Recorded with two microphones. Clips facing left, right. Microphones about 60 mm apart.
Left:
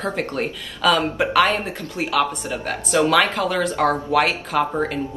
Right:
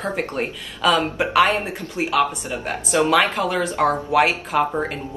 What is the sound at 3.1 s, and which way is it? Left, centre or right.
Speech, centre.